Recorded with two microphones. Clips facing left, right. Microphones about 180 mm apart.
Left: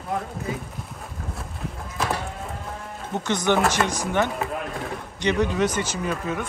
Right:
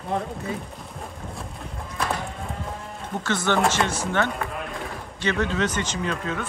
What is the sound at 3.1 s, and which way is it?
Speech, 20° left (ahead or behind).